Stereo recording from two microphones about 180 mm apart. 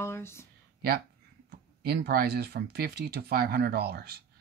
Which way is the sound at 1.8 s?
60° right (ahead or behind).